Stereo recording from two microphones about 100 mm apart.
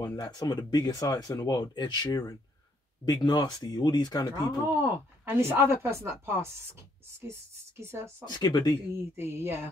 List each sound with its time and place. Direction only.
0.0 s speech: 40° left (ahead or behind)
4.6 s speech: 25° right (ahead or behind)
8.3 s speech: 45° left (ahead or behind)
9.1 s speech: 25° right (ahead or behind)